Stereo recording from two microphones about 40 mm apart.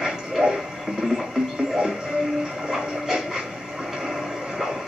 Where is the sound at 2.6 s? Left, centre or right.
Centre.